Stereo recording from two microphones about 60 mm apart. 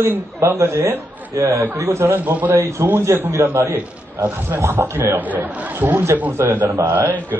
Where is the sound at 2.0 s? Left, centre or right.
Right.